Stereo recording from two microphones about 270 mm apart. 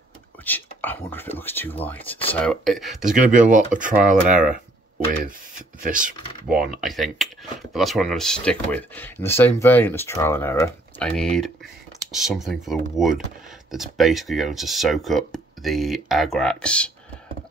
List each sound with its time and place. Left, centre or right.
0.5 s speech: centre
3.2 s speech: right
5.8 s speech: right
6.7 s speech: centre